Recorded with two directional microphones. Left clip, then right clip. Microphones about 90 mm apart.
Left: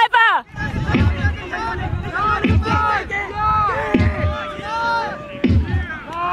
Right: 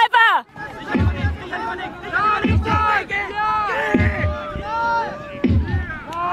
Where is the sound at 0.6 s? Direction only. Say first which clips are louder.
Left 2 dB; 40° left (ahead or behind).